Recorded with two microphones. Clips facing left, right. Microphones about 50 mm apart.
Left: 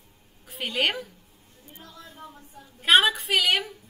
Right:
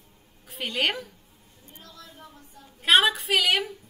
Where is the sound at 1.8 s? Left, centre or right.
Left.